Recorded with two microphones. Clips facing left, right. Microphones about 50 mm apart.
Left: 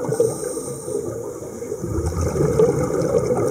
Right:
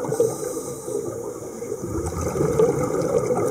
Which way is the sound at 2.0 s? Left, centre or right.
Centre.